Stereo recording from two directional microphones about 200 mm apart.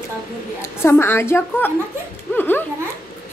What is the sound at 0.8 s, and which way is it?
A woman's voice, 10° left (ahead or behind).